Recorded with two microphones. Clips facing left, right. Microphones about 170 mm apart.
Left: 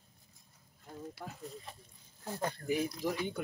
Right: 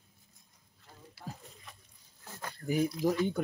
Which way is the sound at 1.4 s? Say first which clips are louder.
Left 8 dB; 35° left (ahead or behind).